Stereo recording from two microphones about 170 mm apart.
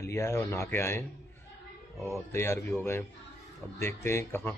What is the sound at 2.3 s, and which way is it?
Speech, 15° left (ahead or behind).